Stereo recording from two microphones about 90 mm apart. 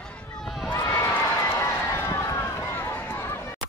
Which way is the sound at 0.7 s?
30° left (ahead or behind).